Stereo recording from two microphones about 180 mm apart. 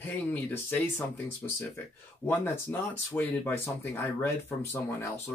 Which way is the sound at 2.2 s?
10° left (ahead or behind).